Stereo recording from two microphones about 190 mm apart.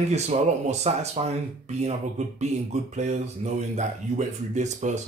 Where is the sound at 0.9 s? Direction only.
35° right (ahead or behind).